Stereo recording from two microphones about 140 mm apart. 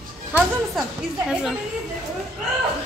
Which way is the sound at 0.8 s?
5° right (ahead or behind).